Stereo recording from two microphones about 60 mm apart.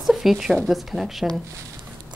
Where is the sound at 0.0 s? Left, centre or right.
Centre.